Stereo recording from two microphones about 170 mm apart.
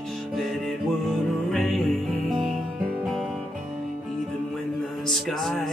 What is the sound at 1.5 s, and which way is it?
Music, centre (ahead or behind).